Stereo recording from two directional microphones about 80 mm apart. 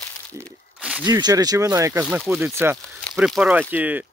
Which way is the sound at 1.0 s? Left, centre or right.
Right.